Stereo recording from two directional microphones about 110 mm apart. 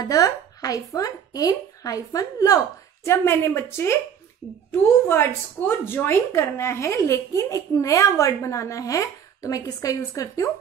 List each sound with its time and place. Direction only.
0.0 s a woman's voice: 35° left (ahead or behind)